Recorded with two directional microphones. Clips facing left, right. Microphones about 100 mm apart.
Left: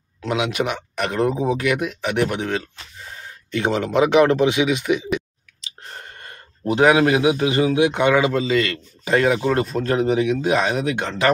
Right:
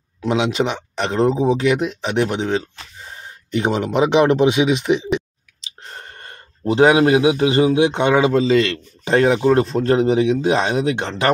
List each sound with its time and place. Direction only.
0.2 s a man's voice: 25° right (ahead or behind)